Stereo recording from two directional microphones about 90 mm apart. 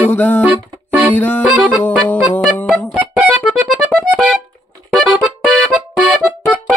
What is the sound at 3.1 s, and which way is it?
Music, 10° right (ahead or behind).